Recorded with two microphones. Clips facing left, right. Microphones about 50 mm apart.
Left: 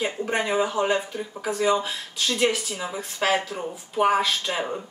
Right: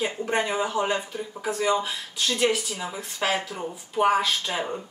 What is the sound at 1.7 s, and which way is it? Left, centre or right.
Speech, centre.